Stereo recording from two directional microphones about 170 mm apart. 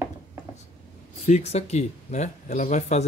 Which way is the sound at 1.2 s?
40° left (ahead or behind).